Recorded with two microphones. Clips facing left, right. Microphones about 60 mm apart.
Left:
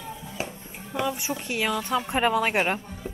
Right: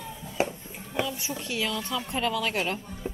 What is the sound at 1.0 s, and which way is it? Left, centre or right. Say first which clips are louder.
A woman's voice: left 4 dB; left.